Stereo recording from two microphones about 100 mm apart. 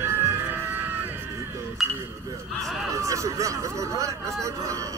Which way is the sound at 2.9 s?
30° right (ahead or behind).